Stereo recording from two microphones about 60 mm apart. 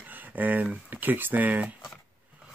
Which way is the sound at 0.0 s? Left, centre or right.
Right.